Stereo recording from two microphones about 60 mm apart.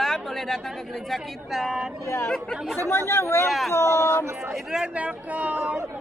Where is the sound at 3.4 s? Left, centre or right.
Centre.